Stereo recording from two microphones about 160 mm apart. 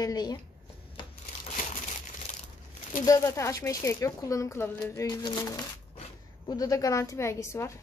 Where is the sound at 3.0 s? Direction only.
20° left (ahead or behind).